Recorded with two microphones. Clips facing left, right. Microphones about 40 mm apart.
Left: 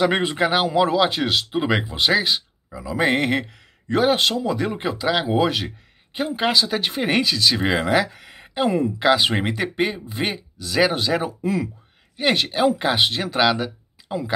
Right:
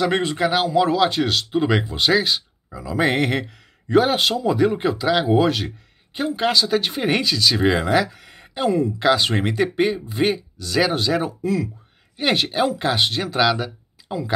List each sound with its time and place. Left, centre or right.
0.0 s a man's voice: centre